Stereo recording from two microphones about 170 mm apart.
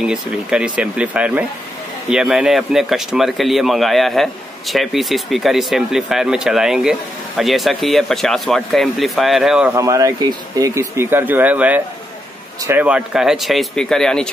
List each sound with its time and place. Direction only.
0.0 s a man's voice: 5° right (ahead or behind)
9.8 s a man's voice: 20° right (ahead or behind); by 14.3 s 5° left (ahead or behind)